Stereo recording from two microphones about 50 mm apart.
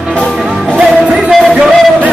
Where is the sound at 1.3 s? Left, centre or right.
Centre.